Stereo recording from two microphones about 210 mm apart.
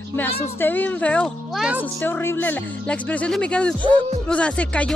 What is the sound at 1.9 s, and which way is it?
Speech, 10° left (ahead or behind).